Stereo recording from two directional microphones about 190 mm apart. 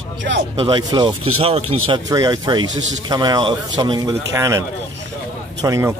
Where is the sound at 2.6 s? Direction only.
85° right.